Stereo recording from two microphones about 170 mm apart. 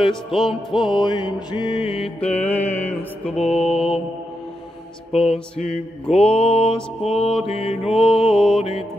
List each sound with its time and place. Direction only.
0.7 s music: 25° left (ahead or behind)
2.1 s mantra: 10° left (ahead or behind)
3.3 s mantra: 35° left (ahead or behind)
5.1 s mantra: 35° left (ahead or behind)
8.0 s music: centre (ahead or behind)